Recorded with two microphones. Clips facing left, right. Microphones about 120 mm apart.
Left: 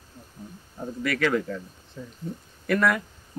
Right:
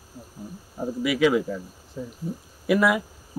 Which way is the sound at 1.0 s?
5° right (ahead or behind).